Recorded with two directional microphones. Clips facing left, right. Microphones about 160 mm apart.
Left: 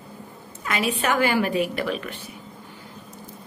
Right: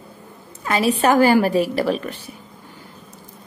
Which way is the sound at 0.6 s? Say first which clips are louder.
Right 7 dB; 35° right (ahead or behind).